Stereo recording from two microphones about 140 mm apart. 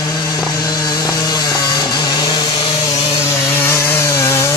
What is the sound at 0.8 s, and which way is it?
Chainsaw, 30° left (ahead or behind).